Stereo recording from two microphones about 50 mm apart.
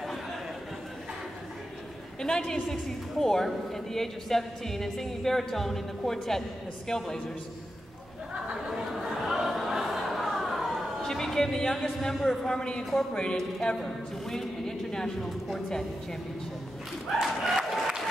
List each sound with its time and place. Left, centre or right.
2.2 s a woman's voice: centre
8.9 s a sound: centre
11.0 s a man's voice: centre
13.4 s a woman's voice: centre
17.2 s applause: centre